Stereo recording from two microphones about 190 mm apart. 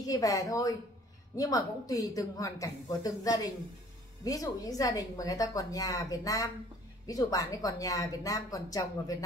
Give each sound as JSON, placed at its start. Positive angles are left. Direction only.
{"t": 0.0, "sound": "a woman's voice", "side_deg": 20}